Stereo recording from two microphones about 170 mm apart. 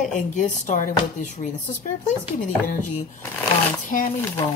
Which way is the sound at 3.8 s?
50° left (ahead or behind).